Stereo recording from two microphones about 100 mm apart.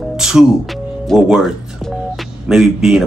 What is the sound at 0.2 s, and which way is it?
Speech, 5° right (ahead or behind).